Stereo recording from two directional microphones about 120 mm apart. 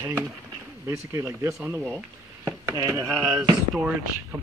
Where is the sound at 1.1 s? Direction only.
25° right (ahead or behind).